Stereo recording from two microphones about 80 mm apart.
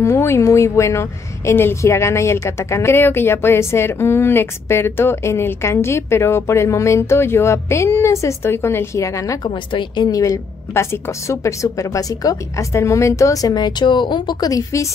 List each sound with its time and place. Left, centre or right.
0.0 s a woman's voice: left
9.4 s a woman's voice: left
10.0 s a woman's voice: left
14.5 s a woman's voice: left